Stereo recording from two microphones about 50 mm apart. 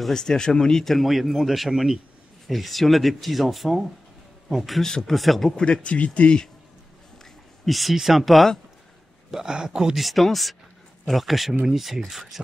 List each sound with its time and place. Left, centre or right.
0.1 s speech: centre
4.8 s speech: centre
5.6 s speech: left
7.6 s speech: centre
9.3 s speech: centre
9.9 s speech: centre